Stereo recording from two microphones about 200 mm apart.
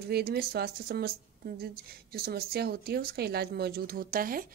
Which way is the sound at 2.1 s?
50° right (ahead or behind).